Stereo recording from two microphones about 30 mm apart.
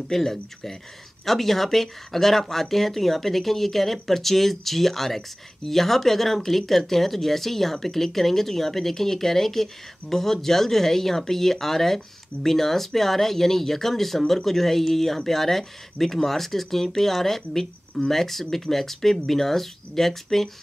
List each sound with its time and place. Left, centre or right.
0.1 s speech: centre